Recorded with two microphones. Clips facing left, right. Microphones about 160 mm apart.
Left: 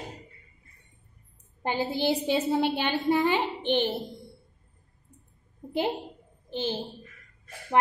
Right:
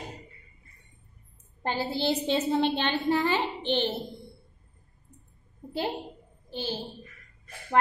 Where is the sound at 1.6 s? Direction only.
15° left (ahead or behind).